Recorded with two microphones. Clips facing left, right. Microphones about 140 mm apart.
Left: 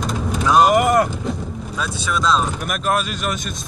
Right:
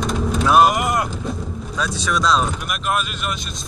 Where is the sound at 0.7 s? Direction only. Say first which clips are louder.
Left 6 dB; 50° left (ahead or behind).